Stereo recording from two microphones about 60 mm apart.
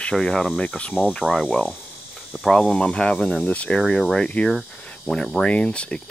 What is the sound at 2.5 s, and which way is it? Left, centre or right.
Cricket, centre.